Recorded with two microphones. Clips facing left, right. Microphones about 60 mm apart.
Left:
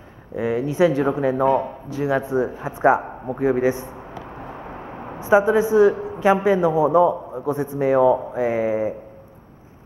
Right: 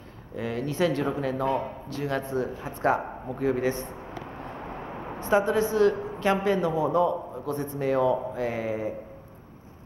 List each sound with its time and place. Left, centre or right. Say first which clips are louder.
0.4 s speech: left 8 dB; centre
5.2 s speech: left 7 dB; centre